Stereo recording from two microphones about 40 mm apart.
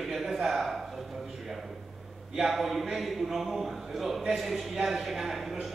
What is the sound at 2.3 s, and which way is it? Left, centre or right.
A man's voice, centre.